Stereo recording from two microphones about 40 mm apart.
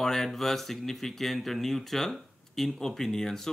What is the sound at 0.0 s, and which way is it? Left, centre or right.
Speech, centre.